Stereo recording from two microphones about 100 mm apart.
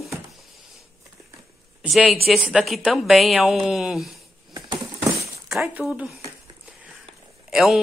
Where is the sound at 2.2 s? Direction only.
5° right (ahead or behind).